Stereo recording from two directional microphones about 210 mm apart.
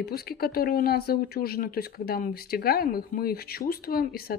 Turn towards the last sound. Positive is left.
turn(degrees=45)  # may be behind; listen again after turning